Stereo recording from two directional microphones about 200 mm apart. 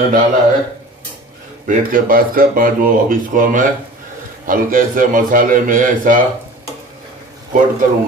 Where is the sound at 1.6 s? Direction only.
45° right (ahead or behind).